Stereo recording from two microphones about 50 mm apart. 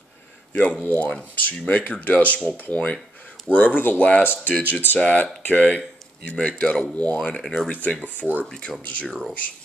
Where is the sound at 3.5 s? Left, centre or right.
Left.